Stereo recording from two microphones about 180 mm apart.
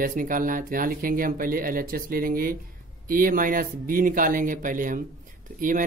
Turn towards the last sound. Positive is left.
turn(degrees=-50)  # may be behind; listen again after turning